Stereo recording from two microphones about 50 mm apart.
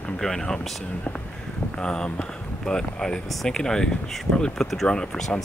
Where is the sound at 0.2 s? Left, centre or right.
Centre.